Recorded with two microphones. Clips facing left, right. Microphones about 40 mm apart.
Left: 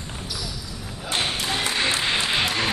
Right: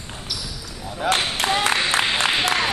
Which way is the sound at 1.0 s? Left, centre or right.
Right.